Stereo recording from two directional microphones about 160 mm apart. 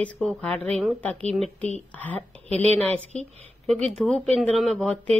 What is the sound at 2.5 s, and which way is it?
Speech, 40° right (ahead or behind).